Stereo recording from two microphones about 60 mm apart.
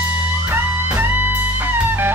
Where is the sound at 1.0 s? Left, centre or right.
Right.